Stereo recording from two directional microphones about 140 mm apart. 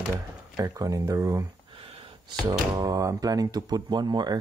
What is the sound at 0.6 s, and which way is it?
Speech, 25° right (ahead or behind).